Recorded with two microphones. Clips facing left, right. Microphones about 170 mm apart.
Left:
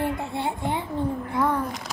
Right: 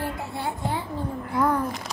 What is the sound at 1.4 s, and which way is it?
Speech, centre (ahead or behind).